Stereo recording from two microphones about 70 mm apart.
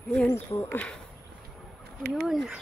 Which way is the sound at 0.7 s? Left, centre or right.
Centre.